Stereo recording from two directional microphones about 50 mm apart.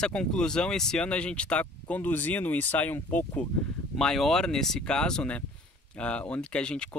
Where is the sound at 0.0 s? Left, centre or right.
Centre; by 3.4 s left.